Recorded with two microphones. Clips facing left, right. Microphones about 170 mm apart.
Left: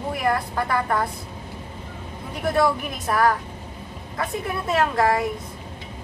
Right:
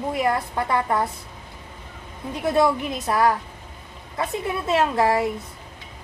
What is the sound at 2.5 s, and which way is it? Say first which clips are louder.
Speech: right 1 dB; 20° right (ahead or behind).